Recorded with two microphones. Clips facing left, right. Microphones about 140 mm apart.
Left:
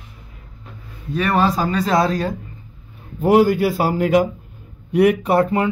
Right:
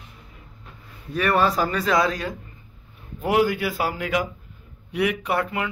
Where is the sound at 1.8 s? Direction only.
35° left (ahead or behind).